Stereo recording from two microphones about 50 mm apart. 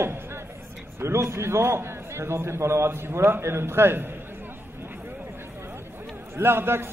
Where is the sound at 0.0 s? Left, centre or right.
Right.